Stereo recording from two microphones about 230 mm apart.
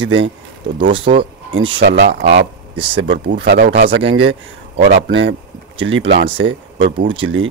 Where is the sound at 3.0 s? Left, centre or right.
Right.